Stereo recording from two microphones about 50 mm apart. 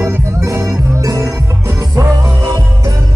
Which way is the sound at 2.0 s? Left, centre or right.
Right.